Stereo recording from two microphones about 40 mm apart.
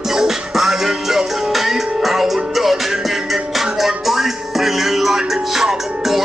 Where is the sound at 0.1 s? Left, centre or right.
Centre.